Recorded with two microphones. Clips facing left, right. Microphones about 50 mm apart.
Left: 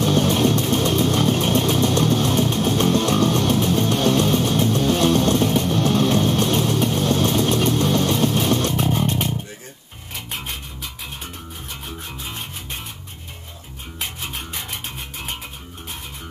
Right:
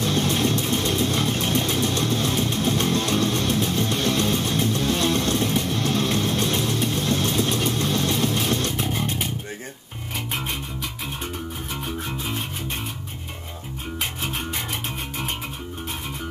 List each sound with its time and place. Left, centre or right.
0.0 s music: left
0.7 s vehicle: left
2.4 s music: left
9.0 s a sound: left